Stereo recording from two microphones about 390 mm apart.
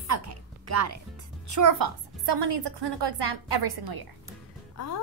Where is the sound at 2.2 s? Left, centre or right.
Right.